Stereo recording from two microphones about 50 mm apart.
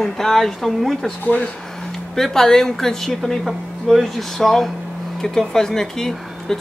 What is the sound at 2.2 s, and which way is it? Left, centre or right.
Speech, centre.